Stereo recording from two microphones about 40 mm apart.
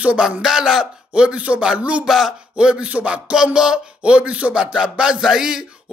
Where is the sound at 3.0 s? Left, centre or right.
Right.